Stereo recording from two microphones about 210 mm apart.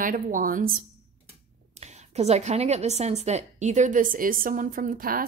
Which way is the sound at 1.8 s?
30° right (ahead or behind).